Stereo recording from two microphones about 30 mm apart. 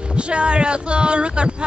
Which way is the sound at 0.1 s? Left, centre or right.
Right.